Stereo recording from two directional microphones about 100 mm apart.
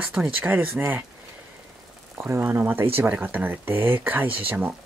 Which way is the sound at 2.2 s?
25° right (ahead or behind).